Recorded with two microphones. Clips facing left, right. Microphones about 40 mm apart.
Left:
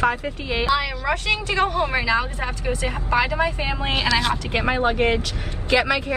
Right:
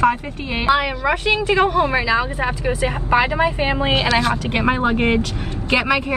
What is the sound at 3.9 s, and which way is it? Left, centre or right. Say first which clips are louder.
A woman's voice: even; right.